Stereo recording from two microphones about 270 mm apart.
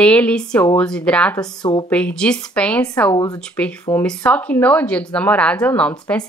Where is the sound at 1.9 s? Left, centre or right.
Centre.